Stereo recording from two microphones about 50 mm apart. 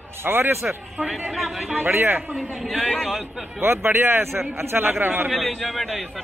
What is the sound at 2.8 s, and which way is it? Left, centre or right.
Speech, centre.